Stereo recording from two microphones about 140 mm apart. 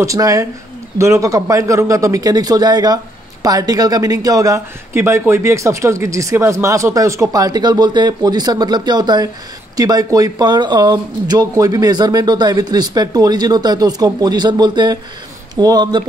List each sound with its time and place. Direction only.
0.0 s speech: 25° right (ahead or behind)